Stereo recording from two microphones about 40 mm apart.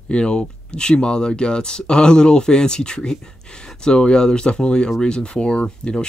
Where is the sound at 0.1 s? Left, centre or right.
Left.